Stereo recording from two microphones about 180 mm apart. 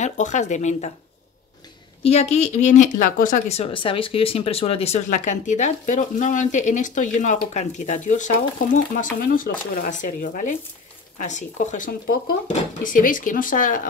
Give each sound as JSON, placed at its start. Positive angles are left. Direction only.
{"t": 0.0, "sound": "speech", "side_deg": 40}
{"t": 2.0, "sound": "speech", "side_deg": 35}